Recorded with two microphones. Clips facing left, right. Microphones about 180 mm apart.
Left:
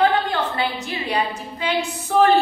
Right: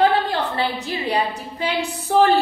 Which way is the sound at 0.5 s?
35° right (ahead or behind).